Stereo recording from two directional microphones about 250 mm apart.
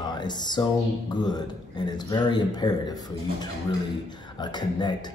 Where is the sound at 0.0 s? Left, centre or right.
Centre.